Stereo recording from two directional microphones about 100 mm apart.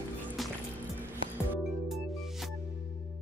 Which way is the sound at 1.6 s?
Centre (ahead or behind).